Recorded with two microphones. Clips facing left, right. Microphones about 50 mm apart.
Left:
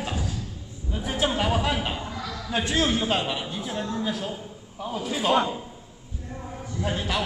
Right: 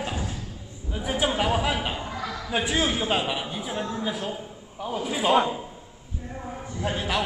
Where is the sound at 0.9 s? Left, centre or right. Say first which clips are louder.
Right 1 dB; centre.